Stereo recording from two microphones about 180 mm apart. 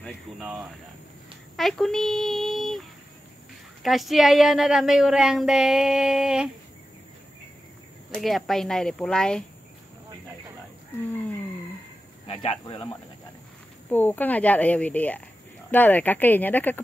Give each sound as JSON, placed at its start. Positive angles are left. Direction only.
{"t": 0.0, "sound": "speech", "side_deg": -5}
{"t": 3.8, "sound": "a woman's voice", "side_deg": 0}
{"t": 8.2, "sound": "a woman's voice", "side_deg": 0}
{"t": 12.3, "sound": "speech", "side_deg": 30}
{"t": 13.8, "sound": "speech", "side_deg": 10}